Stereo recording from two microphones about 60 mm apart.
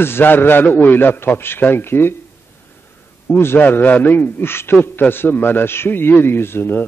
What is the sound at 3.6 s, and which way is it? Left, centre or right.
A man's voice, left.